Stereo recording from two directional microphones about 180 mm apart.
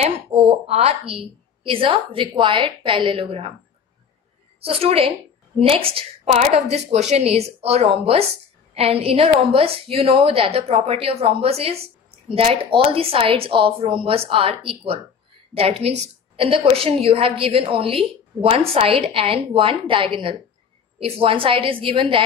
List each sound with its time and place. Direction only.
0.0 s a woman's voice: 35° right (ahead or behind)
4.6 s a woman's voice: 30° right (ahead or behind)